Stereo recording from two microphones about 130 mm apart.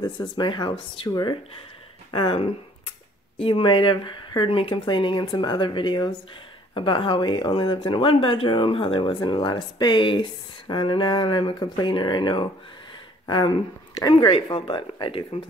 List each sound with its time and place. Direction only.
0.4 s speech: 35° left (ahead or behind)
14.1 s speech: 45° left (ahead or behind)